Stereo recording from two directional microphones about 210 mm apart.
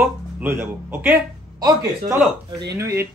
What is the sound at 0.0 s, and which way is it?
Speech, 10° right (ahead or behind).